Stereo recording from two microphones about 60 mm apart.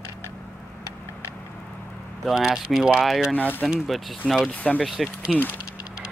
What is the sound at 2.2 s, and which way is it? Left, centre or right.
Speech, centre.